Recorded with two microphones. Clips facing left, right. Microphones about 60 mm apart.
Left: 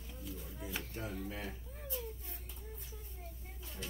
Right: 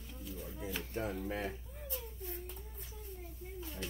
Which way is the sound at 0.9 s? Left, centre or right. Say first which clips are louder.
Right 8 dB; right.